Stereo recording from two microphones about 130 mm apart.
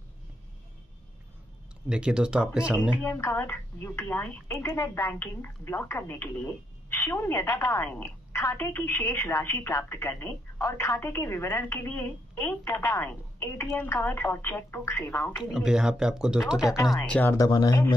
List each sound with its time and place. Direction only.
1.9 s speech: 5° right (ahead or behind)
3.0 s a woman's voice: 20° left (ahead or behind)
15.3 s speech: 5° right (ahead or behind)
17.3 s speech: 30° left (ahead or behind)